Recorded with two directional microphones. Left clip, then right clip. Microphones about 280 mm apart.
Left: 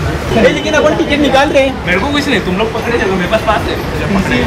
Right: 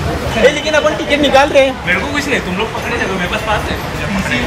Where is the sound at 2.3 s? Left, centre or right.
Centre.